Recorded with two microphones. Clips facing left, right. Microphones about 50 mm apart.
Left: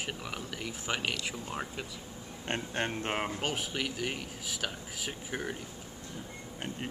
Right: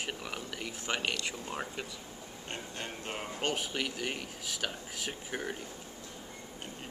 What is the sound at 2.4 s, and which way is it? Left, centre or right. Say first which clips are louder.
Speech: left 8 dB; left.